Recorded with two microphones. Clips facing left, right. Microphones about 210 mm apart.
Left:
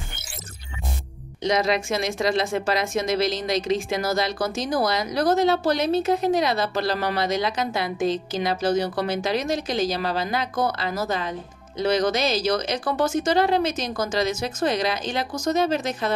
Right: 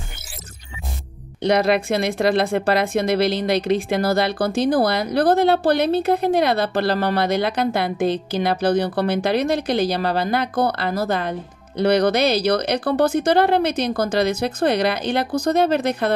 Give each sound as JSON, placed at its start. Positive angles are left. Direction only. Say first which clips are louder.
{"t": 1.4, "sound": "speech", "louder": "right 5 dB", "side_deg": -60}